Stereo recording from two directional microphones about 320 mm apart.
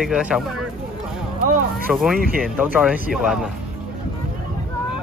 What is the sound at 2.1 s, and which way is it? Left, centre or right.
Speech, right.